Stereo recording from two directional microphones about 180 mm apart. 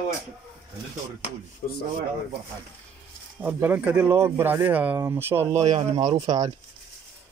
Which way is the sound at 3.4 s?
10° right (ahead or behind).